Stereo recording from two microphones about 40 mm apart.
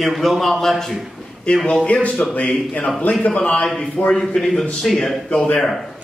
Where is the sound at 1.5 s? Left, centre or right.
Left.